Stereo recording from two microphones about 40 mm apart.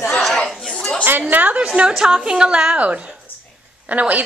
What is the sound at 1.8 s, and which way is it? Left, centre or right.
Speech, right.